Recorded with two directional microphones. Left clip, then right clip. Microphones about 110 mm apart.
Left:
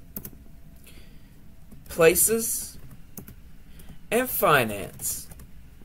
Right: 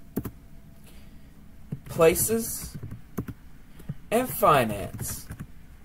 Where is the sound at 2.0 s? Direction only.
Centre (ahead or behind).